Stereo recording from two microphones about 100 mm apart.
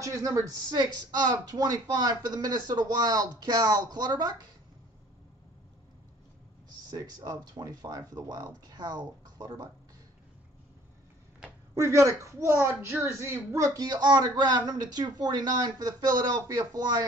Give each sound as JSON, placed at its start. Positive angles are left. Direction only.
{"t": 0.0, "sound": "a woman's voice", "side_deg": -30}
{"t": 6.9, "sound": "a woman's voice", "side_deg": -45}
{"t": 11.7, "sound": "a woman's voice", "side_deg": -30}